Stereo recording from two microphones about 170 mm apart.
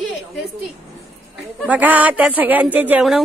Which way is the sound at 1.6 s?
10° right (ahead or behind).